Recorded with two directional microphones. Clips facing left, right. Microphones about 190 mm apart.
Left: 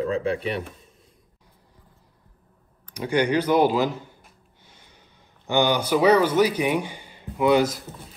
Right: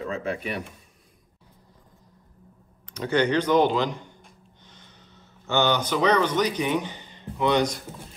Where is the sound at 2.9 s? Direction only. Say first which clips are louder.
Left 1 dB; 10° left (ahead or behind).